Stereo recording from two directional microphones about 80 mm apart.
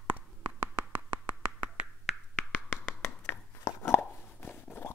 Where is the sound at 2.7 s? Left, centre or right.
Left.